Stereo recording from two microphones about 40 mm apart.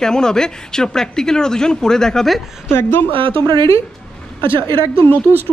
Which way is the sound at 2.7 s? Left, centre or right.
Left.